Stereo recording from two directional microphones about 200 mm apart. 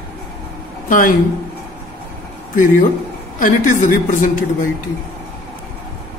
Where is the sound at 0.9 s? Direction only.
40° left (ahead or behind).